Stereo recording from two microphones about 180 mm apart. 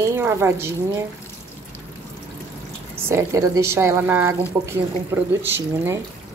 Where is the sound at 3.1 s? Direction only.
15° right (ahead or behind).